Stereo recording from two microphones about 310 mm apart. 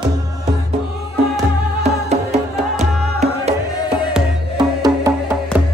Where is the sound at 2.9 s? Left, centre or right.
Centre.